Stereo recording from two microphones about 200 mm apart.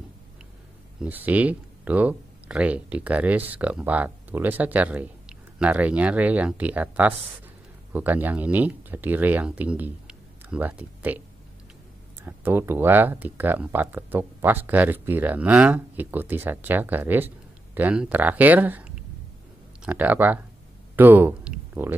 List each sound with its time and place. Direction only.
1.0 s speech: 10° right (ahead or behind)